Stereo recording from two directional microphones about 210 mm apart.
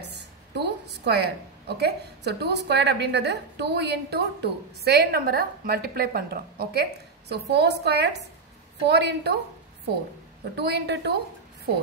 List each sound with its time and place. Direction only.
0.6 s a woman's voice: 55° right (ahead or behind)
10.5 s a woman's voice: 50° right (ahead or behind)